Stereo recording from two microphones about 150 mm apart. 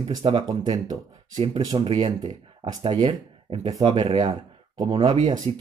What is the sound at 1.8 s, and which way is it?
Speech, 40° right (ahead or behind).